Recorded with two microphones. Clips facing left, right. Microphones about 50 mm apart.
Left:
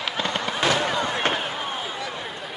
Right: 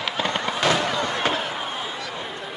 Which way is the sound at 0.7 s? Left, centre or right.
Centre.